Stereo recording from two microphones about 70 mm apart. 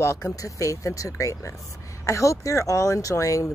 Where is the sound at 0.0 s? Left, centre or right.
Left.